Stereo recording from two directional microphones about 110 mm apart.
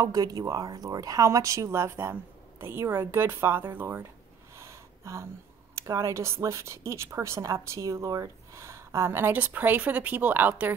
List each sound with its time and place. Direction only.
0.0 s a woman's voice: 35° right (ahead or behind)
4.6 s a sound: 25° right (ahead or behind)
5.8 s a woman's voice: 30° right (ahead or behind)